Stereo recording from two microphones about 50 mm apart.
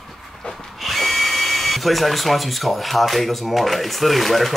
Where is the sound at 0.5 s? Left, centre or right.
Centre.